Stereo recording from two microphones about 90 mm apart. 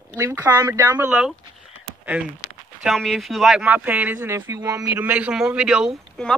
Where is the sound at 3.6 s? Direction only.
15° right (ahead or behind).